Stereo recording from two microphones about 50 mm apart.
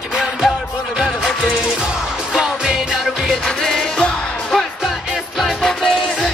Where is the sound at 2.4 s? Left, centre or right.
Centre.